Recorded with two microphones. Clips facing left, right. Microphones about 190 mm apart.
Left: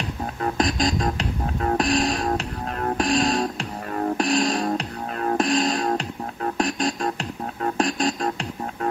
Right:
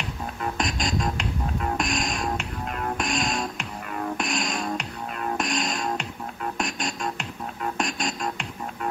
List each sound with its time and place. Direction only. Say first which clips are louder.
0.4 s music: left 6 dB; 35° left (ahead or behind)